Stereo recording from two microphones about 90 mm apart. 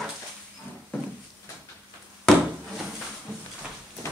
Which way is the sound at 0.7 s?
20° left (ahead or behind).